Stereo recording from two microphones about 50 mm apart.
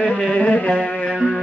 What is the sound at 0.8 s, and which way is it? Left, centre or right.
Music, left.